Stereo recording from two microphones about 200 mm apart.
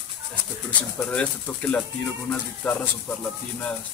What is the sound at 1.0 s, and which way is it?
Speech, 5° left (ahead or behind).